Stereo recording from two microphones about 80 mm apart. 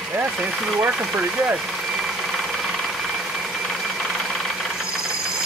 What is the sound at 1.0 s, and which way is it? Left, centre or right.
Speech, centre.